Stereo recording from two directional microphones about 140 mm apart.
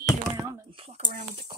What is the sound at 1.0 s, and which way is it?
Speech, 70° right (ahead or behind).